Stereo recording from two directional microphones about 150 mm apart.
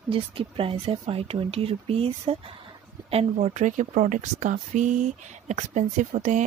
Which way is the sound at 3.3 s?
55° right (ahead or behind).